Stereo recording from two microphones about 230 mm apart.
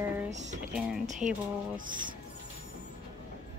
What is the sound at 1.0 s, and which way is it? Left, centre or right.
Speech, right.